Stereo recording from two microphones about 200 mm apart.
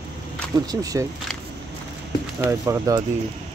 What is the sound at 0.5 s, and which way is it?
Speech, 20° right (ahead or behind).